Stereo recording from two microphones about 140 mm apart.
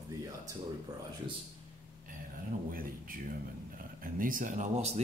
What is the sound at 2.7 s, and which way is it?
Speech, 85° right.